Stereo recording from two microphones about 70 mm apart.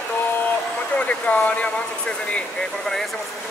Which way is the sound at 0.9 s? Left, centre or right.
Centre.